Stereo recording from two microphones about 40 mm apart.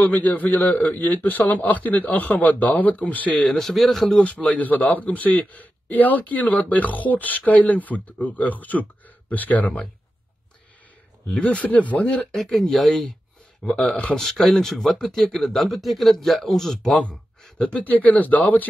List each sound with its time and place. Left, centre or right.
0.0 s a man's voice: left
3.4 s speech: centre
4.2 s a man's voice: left
11.3 s speech: left
12.0 s speech: left
12.6 s speech: centre
17.0 s a sound: left
17.8 s a man's voice: left